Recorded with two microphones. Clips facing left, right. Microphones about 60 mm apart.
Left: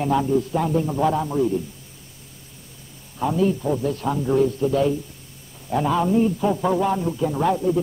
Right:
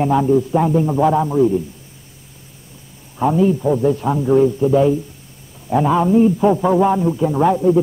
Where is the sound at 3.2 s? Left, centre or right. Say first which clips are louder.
Right 6 dB; centre.